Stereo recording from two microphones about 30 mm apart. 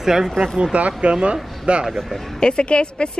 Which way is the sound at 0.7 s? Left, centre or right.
Right.